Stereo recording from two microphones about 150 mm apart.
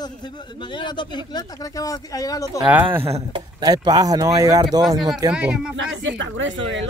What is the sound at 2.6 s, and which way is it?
Speech, 10° right (ahead or behind).